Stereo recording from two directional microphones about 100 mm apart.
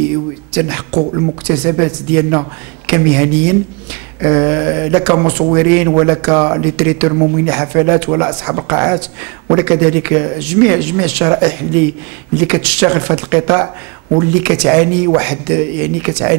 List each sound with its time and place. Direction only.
0.6 s speech: 20° right (ahead or behind)